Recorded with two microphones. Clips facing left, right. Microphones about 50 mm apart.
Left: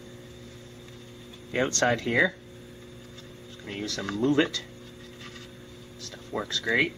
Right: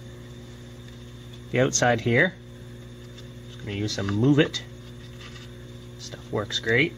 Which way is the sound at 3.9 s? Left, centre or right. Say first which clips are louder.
Right 3 dB; centre.